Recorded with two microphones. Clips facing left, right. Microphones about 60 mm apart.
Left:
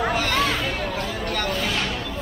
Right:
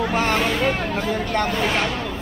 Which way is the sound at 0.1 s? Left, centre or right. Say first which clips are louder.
Right 2 dB; right.